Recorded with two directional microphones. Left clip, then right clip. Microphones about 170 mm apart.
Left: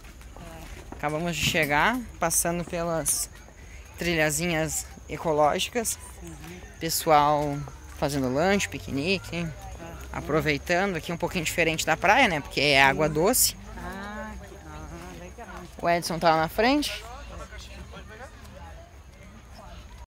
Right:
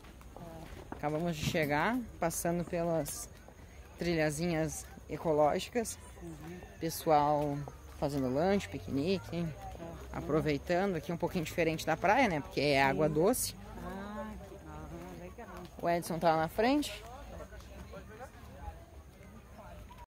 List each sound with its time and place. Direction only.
1.0 s speech: centre (ahead or behind)
4.0 s speech: centre (ahead or behind)
13.8 s a sound: 10° right (ahead or behind)
15.8 s speech: 20° left (ahead or behind)